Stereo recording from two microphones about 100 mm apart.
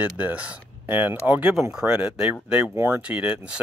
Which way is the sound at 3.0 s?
10° right (ahead or behind).